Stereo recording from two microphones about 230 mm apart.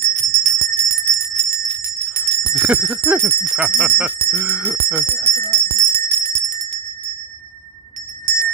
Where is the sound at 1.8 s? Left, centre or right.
Right.